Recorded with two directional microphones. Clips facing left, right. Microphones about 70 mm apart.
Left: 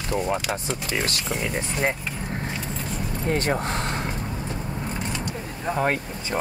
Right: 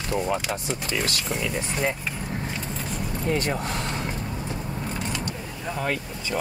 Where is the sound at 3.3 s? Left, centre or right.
Left.